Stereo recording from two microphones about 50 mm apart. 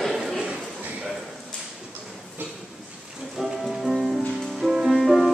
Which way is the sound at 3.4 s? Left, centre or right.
Centre.